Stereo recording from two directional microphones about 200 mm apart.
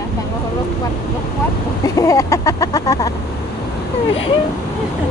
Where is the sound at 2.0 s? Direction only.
15° left (ahead or behind).